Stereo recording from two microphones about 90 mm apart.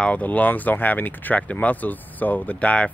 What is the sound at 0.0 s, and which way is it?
Speech, 15° left (ahead or behind).